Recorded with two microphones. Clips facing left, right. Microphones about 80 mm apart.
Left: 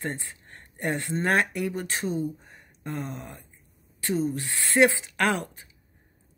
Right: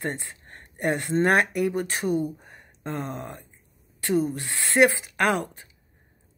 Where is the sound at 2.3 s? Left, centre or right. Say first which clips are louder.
Right 2 dB; right.